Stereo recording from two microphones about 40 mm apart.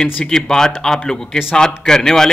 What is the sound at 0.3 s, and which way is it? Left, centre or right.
A man's voice, centre.